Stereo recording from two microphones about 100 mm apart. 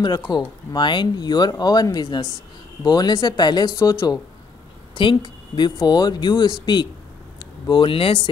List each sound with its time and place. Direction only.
0.0 s speech: 45° left (ahead or behind)
4.9 s a woman's voice: 55° left (ahead or behind)
5.8 s speech: 45° left (ahead or behind); by 8.2 s 65° left (ahead or behind)